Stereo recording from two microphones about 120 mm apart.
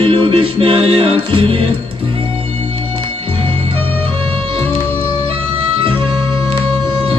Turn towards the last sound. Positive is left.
turn(degrees=-50)  # may be behind; listen again after turning